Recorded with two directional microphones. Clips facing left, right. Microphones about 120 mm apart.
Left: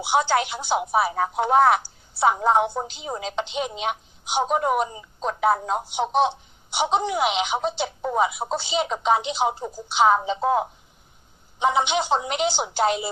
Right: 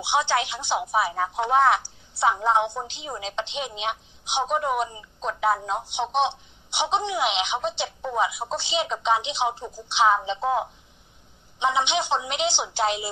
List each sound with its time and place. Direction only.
0.0 s a woman's voice: 45° left (ahead or behind)